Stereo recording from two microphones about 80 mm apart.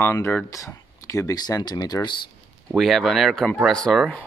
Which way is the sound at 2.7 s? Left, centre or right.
Centre.